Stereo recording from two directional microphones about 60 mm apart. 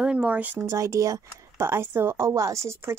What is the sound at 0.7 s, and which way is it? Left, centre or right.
Speech, right.